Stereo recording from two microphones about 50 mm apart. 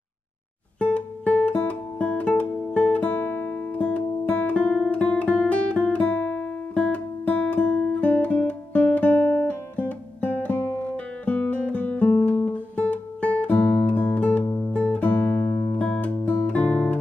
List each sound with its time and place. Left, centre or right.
0.7 s music: left
10.7 s guitar: left
14.7 s music: left
16.1 s music: left